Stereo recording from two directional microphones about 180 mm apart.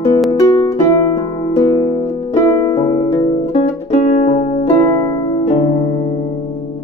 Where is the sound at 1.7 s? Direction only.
30° left (ahead or behind).